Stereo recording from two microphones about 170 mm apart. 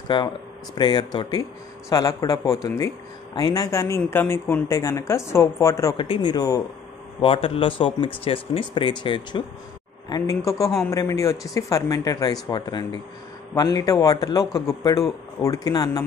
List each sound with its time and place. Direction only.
0.1 s speech: 30° left (ahead or behind)
5.9 s speech: 30° left (ahead or behind)